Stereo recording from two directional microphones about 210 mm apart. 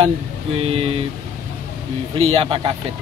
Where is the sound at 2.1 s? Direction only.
25° right (ahead or behind).